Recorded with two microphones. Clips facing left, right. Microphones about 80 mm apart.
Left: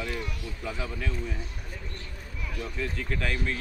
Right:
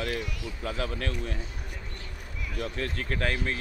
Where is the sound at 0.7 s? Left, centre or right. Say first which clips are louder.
Right 3 dB; right.